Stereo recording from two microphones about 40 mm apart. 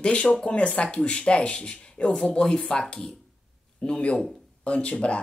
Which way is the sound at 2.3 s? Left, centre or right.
Left.